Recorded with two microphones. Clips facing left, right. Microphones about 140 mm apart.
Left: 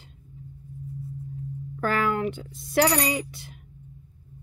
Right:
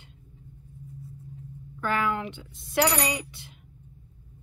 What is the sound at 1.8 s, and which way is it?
Speech, 45° left (ahead or behind).